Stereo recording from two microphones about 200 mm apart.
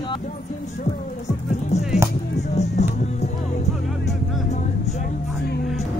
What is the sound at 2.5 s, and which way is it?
Music, 35° left (ahead or behind).